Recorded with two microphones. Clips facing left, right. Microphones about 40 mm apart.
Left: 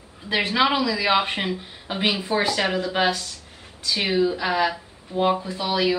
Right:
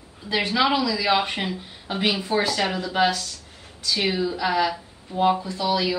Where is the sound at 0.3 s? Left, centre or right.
Centre.